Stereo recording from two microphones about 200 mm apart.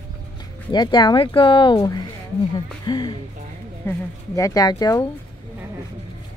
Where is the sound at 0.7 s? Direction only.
20° left (ahead or behind).